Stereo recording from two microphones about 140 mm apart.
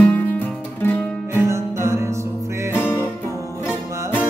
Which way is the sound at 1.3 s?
20° right (ahead or behind).